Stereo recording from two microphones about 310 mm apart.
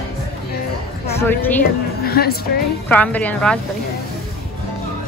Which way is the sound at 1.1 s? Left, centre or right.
Centre.